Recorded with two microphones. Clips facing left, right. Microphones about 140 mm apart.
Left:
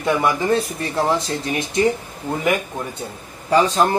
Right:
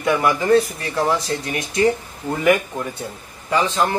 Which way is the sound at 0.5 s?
25° left (ahead or behind).